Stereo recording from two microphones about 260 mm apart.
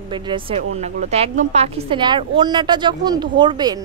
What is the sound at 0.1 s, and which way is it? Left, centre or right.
A woman's voice, centre.